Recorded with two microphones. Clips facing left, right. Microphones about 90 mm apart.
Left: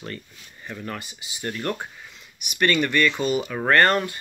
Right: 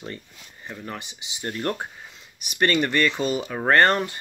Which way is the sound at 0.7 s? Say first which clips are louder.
Left 2 dB; 20° right (ahead or behind).